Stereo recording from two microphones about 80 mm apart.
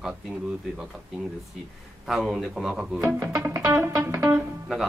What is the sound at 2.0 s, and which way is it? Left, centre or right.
Speech, centre.